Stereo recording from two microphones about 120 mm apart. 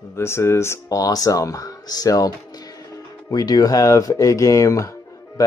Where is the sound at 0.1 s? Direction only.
20° left (ahead or behind).